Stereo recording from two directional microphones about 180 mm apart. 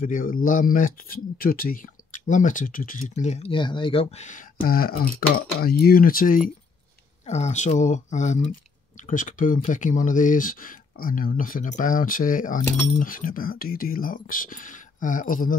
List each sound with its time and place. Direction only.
0.0 s speech: 50° left (ahead or behind)
7.2 s speech: 40° left (ahead or behind)